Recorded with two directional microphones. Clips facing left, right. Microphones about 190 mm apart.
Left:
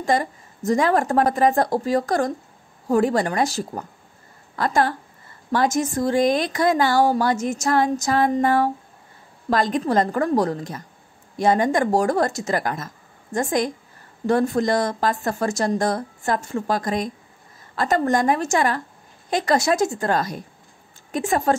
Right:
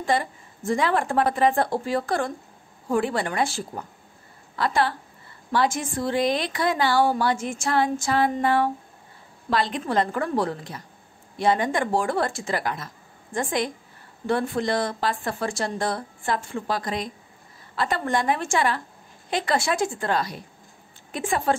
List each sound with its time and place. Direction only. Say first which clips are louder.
0.0 s a woman's voice: left 3 dB; 40° left (ahead or behind)